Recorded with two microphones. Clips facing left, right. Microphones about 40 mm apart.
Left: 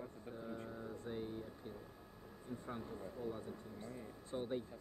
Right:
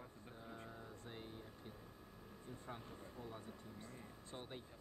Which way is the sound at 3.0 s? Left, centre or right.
Centre.